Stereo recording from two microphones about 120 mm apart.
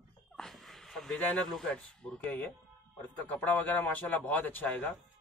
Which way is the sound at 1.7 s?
10° left (ahead or behind).